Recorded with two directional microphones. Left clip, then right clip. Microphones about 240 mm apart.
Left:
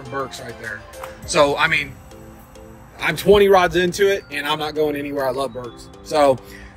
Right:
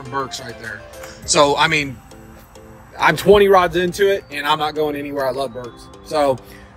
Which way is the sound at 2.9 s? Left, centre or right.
Right.